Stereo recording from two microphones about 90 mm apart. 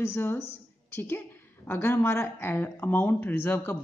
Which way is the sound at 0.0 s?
25° left (ahead or behind).